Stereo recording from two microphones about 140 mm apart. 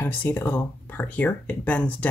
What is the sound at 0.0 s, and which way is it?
Speech, 15° left (ahead or behind).